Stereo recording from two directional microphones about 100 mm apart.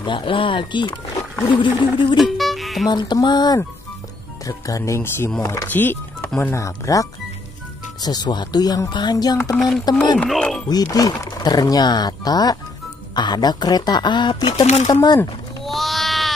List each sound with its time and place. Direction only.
0.0 s speech: 55° left (ahead or behind)
2.1 s music: centre (ahead or behind)
2.9 s speech: 45° left (ahead or behind)
5.7 s speech: 20° left (ahead or behind)
6.5 s speech: 30° left (ahead or behind)
8.0 s speech: 45° left (ahead or behind)
9.6 s speech: centre (ahead or behind)
10.7 s speech: 40° left (ahead or behind); by 14.7 s 80° left
14.9 s speech: 35° left (ahead or behind)
15.6 s a sound: centre (ahead or behind)